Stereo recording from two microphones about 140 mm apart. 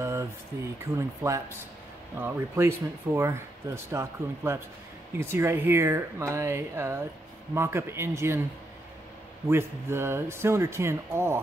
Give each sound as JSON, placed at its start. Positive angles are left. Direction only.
{"t": 0.0, "sound": "a sound", "side_deg": -20}
{"t": 0.5, "sound": "speech", "side_deg": -20}
{"t": 9.5, "sound": "speech", "side_deg": -15}